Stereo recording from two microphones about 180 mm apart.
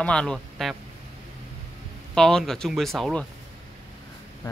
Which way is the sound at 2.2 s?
5° left (ahead or behind).